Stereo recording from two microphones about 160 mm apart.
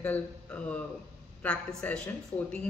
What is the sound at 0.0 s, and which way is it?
Speech, 10° left (ahead or behind).